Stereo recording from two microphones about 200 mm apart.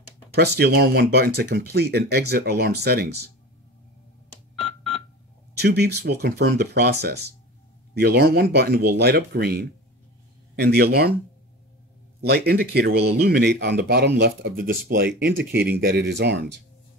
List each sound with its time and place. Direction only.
0.3 s speech: 55° right (ahead or behind)
4.6 s telephone dialing: centre (ahead or behind)
5.6 s speech: 55° right (ahead or behind)
12.2 s speech: 55° right (ahead or behind)